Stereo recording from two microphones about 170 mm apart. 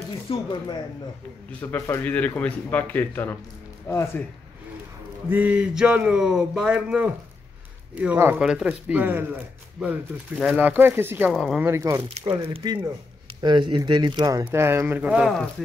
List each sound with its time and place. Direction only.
0.3 s speech: 30° left (ahead or behind)
1.6 s a man's voice: 10° left (ahead or behind)
5.3 s speech: 10° right (ahead or behind)
11.3 s speech: centre (ahead or behind)
11.6 s speech: 15° right (ahead or behind)
12.0 s speech: 35° right (ahead or behind); by 15.4 s 5° right (ahead or behind)